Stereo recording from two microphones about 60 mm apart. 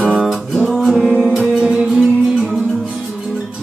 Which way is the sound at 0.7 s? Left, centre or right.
Centre.